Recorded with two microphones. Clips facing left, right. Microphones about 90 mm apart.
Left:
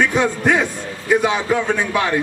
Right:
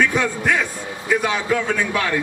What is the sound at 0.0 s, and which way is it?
A man's voice, 20° left (ahead or behind).